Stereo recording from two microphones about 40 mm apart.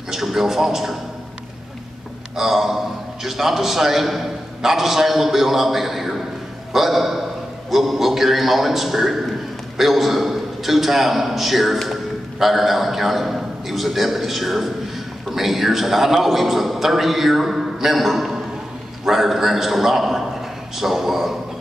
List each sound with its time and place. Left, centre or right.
0.1 s a man's voice: centre
2.3 s a man's voice: centre